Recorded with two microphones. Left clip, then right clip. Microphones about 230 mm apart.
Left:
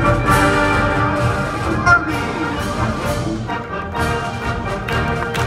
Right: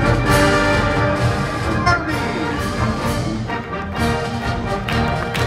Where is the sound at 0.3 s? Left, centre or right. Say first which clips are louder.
Even; centre.